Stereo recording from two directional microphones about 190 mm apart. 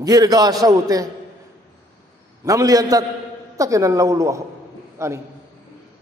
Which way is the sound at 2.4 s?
20° right (ahead or behind).